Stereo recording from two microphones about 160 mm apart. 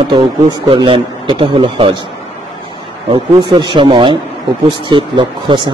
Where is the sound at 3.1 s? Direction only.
30° right (ahead or behind).